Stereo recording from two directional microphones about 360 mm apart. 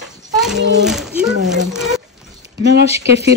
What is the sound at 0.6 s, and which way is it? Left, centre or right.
Speech, right.